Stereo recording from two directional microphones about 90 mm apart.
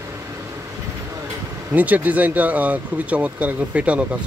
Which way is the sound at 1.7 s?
20° right (ahead or behind).